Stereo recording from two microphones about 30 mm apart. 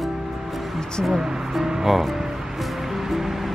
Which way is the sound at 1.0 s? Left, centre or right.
Centre.